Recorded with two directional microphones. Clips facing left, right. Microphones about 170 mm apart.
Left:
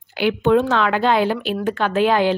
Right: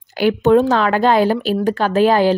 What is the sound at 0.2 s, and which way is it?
A woman's voice, 40° right (ahead or behind).